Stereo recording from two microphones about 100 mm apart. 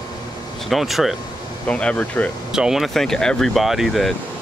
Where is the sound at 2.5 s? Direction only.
5° right (ahead or behind).